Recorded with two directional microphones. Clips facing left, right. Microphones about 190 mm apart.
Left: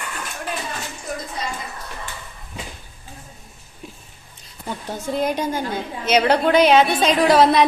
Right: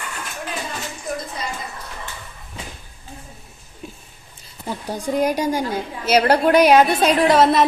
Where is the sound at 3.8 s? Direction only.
Centre (ahead or behind).